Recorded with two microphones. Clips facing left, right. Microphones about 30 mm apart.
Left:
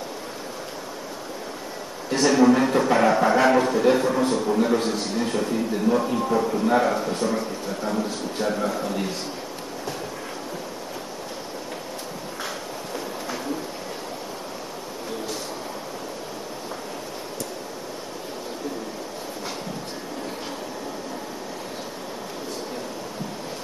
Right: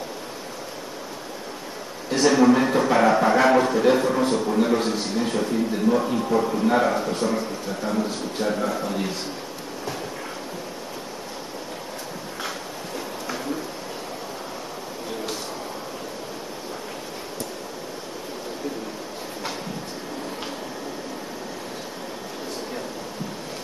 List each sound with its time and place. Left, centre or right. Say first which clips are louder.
2.0 s a man's voice: right 1 dB; right
2.3 s a man's voice: left 1 dB; centre